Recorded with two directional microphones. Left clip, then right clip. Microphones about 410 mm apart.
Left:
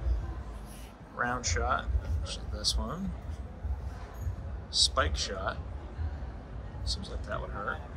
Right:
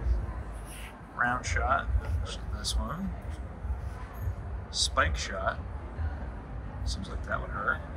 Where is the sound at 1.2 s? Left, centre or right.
Centre.